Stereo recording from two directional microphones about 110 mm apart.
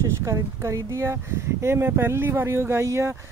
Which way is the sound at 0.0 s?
25° right (ahead or behind).